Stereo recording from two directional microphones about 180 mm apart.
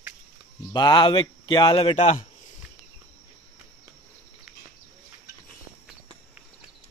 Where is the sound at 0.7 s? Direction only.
25° left (ahead or behind).